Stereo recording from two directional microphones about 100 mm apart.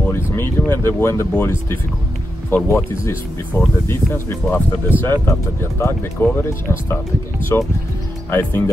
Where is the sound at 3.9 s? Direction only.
25° left (ahead or behind).